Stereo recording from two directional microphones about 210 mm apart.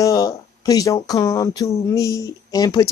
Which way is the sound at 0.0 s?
15° left (ahead or behind).